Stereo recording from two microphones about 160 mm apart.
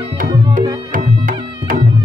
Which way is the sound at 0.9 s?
55° right (ahead or behind).